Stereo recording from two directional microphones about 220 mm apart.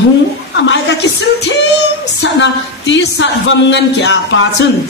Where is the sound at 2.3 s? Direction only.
55° left (ahead or behind).